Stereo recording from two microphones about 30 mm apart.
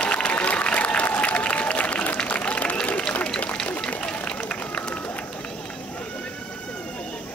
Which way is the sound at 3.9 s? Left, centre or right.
Left.